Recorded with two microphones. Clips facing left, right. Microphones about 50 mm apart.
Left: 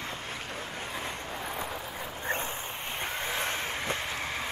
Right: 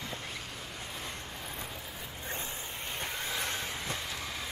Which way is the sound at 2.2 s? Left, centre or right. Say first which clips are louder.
Left 8 dB; left.